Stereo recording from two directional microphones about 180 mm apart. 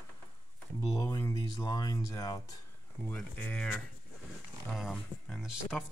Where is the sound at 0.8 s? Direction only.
20° left (ahead or behind).